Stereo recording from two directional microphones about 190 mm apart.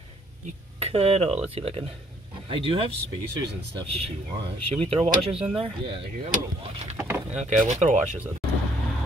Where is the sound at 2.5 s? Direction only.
30° right (ahead or behind).